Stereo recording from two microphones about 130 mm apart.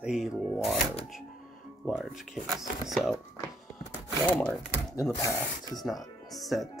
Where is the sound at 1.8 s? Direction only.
Centre (ahead or behind).